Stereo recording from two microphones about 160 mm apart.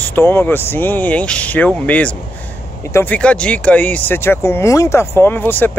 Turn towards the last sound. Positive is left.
turn(degrees=10)  # may be behind; listen again after turning